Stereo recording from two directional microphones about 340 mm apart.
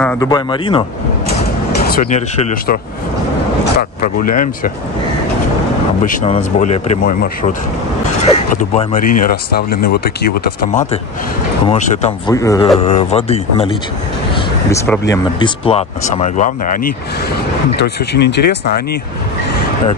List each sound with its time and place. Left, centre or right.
0.0 s speech: centre
1.8 s speech: left
4.0 s speech: left
6.0 s speech: centre
8.5 s speech: left